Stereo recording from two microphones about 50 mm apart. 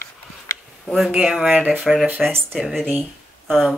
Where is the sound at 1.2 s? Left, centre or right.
Centre.